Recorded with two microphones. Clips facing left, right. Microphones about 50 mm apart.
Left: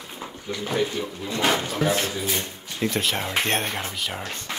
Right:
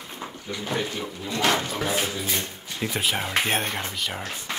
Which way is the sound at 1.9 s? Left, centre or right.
Centre.